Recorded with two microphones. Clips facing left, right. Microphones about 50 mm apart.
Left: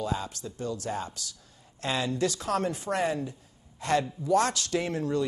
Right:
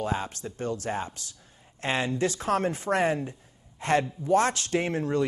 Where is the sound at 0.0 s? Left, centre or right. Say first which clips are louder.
Right 2 dB; right.